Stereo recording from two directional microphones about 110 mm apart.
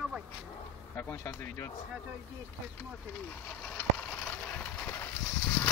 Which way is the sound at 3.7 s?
10° left (ahead or behind).